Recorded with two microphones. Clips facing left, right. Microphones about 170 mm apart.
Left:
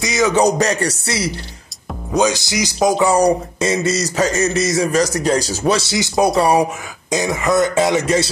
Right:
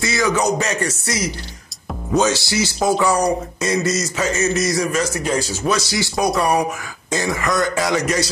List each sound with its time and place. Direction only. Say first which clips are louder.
0.0 s a sound: left 2 dB; 20° left (ahead or behind)
0.4 s speech: left 4 dB; 35° left (ahead or behind)
2.1 s speech: left 1 dB; 15° left (ahead or behind)